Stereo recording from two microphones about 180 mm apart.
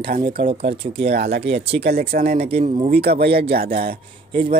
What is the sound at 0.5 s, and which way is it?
Speech, 30° right (ahead or behind).